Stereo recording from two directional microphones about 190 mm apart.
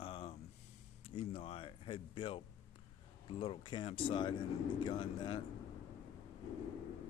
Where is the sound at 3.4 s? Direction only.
25° left (ahead or behind).